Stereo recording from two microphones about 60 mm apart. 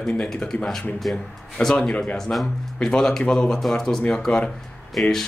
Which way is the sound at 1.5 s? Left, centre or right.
Centre.